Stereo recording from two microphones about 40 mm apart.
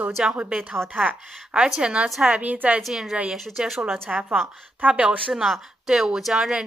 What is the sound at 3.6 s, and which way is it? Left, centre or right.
Speech, centre.